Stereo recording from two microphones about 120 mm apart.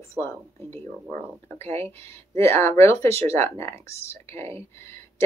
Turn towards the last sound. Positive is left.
turn(degrees=20)  # may be behind; listen again after turning